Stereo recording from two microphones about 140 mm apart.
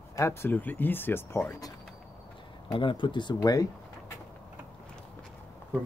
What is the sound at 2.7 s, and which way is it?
Speech, 35° left (ahead or behind).